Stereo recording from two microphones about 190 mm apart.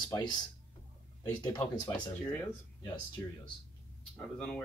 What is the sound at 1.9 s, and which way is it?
Speech, 10° left (ahead or behind).